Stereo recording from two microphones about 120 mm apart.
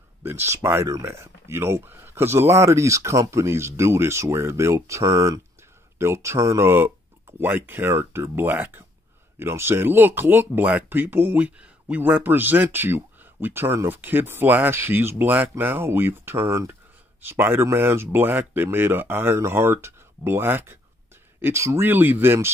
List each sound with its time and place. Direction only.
0.2 s speech: 20° right (ahead or behind)